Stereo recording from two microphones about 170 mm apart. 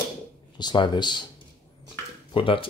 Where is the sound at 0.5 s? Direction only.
25° left (ahead or behind).